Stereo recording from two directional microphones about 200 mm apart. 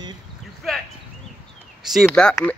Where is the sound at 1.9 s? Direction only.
Centre (ahead or behind).